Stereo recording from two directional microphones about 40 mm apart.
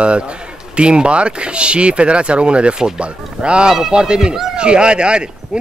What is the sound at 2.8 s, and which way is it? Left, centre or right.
Speech, centre.